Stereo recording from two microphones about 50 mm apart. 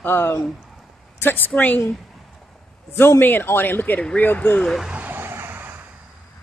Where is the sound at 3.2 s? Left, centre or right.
Left.